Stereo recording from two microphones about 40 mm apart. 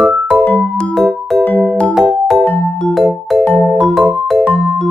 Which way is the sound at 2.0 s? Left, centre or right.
Centre.